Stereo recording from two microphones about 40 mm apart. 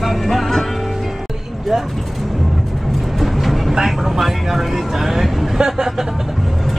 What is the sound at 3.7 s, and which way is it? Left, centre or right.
Vehicle, centre.